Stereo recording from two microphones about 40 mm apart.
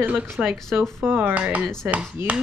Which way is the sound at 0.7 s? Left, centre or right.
Centre.